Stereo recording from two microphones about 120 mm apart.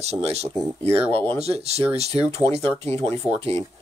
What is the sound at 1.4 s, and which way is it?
Speech, 60° right (ahead or behind).